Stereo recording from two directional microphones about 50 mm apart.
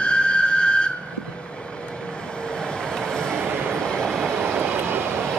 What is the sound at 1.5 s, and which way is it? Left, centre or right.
Vehicle, left.